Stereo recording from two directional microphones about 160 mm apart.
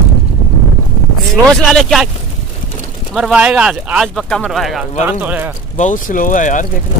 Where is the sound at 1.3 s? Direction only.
Centre (ahead or behind).